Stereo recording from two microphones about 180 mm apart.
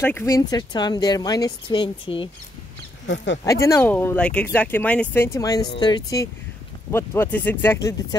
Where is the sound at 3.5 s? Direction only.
15° left (ahead or behind).